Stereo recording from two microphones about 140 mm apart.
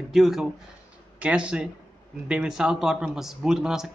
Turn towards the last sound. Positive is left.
turn(degrees=-5)  # may be behind; listen again after turning